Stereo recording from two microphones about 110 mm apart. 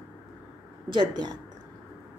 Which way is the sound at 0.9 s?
45° right (ahead or behind).